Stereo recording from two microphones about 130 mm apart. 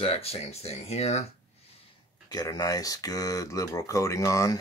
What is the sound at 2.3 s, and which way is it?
Speech, 30° left (ahead or behind).